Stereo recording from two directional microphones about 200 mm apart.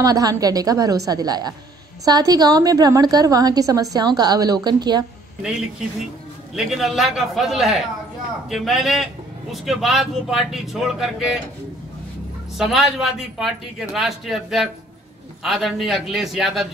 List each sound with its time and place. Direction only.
0.0 s a woman's voice: 20° right (ahead or behind)
6.5 s a man's voice: centre (ahead or behind)
12.5 s a man's voice: centre (ahead or behind)